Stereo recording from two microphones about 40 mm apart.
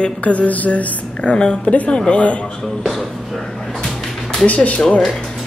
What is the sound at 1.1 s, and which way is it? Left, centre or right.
Speech, left.